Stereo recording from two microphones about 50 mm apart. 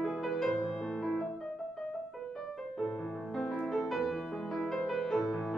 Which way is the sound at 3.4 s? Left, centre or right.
Centre.